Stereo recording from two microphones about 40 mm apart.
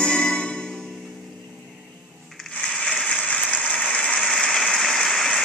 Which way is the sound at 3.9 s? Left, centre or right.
Centre.